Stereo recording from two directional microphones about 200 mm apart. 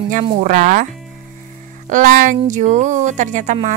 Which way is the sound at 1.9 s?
40° right (ahead or behind).